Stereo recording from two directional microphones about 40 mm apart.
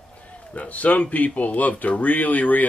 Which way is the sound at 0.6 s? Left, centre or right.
Left.